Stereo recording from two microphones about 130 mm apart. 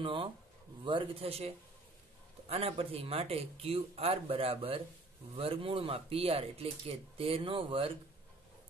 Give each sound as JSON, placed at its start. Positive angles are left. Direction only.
{"t": 0.0, "sound": "speech", "side_deg": -40}